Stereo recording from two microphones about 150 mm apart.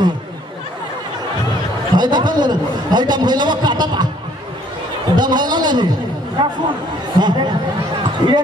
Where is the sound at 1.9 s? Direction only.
30° right (ahead or behind).